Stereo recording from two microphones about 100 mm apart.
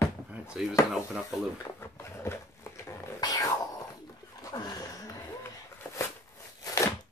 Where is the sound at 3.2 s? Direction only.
40° left (ahead or behind).